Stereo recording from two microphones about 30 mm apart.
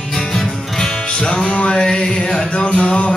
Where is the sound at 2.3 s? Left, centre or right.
Left.